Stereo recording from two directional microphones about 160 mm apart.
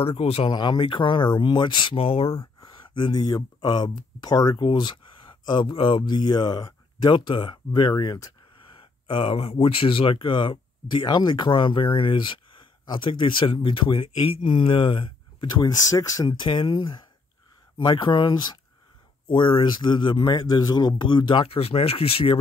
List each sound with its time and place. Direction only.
0.0 s speech: 35° left (ahead or behind)
2.3 s speech: 25° left (ahead or behind)